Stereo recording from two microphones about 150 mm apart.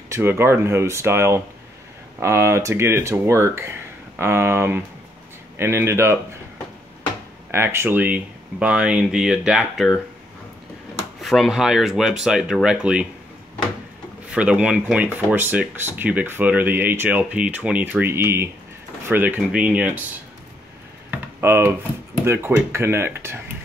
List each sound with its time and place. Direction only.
0.1 s speech: 15° right (ahead or behind)
7.5 s speech: 15° right (ahead or behind)
11.1 s speech: centre (ahead or behind)
14.3 s speech: 5° right (ahead or behind)
21.4 s speech: 15° right (ahead or behind)